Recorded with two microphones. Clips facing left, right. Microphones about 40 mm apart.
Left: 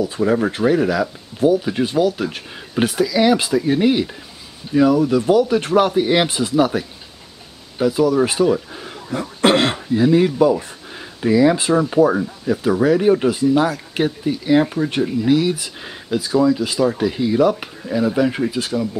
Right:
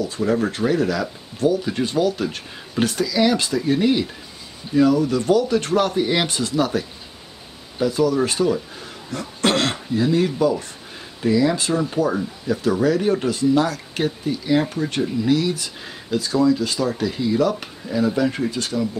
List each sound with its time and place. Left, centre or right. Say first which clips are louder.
0.0 s speech: left 3 dB; centre